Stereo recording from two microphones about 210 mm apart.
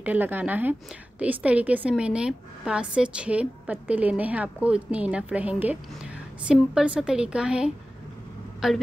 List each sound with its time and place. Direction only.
0.0 s a woman's voice: 10° right (ahead or behind)